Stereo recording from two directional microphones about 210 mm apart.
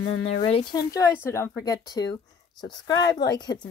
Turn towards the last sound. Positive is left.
turn(degrees=20)  # may be behind; listen again after turning